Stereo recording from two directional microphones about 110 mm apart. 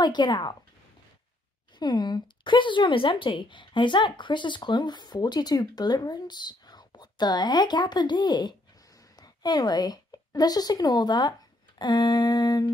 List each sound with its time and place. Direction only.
0.0 s speech: 40° left (ahead or behind)
1.8 s a woman's voice: 40° left (ahead or behind)